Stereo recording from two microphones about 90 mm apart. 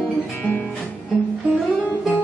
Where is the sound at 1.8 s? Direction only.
15° left (ahead or behind).